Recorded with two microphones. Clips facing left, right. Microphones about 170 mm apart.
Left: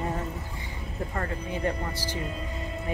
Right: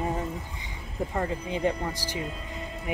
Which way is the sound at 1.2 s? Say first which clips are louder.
Right 3 dB; 15° right (ahead or behind).